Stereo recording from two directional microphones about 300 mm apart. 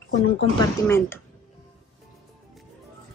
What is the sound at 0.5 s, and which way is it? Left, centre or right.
Speech, centre.